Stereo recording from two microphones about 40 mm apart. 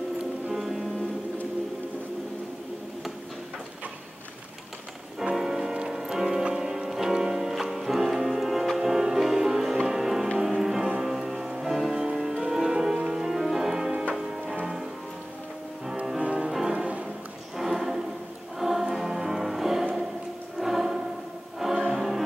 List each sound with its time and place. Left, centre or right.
0.5 s music: centre
5.3 s music: centre
16.3 s music: centre
16.7 s music: right
17.6 s music: centre
20.5 s choir: centre
21.5 s music: centre